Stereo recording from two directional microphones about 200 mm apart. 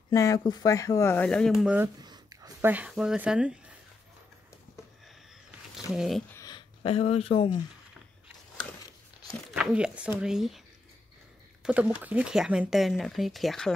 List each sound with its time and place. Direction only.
0.1 s speech: 15° left (ahead or behind); by 1.9 s 5° right (ahead or behind)
2.0 s a sound: 20° right (ahead or behind)
2.7 s speech: 5° right (ahead or behind)
5.9 s speech: centre (ahead or behind)
6.3 s speech: 20° left (ahead or behind)
9.5 s speech: 5° right (ahead or behind)
11.6 s speech: 5° right (ahead or behind)